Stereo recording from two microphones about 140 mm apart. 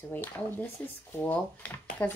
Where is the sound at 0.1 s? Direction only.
15° left (ahead or behind).